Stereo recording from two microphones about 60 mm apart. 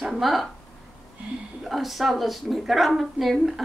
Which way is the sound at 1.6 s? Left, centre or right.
Centre.